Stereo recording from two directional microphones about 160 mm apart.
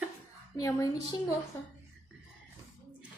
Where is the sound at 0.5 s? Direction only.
20° left (ahead or behind).